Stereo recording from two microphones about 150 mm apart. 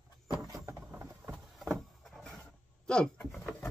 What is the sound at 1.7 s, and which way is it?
Vehicle, centre (ahead or behind).